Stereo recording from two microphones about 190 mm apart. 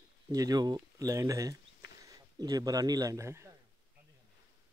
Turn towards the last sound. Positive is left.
turn(degrees=-15)  # may be behind; listen again after turning